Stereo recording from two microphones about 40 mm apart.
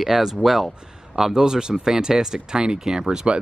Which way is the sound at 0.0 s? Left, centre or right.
Centre.